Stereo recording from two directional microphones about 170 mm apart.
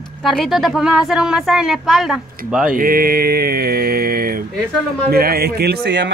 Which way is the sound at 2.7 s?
60° right (ahead or behind).